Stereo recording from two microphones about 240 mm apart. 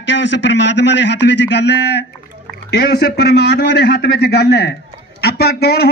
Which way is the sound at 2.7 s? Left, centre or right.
Left.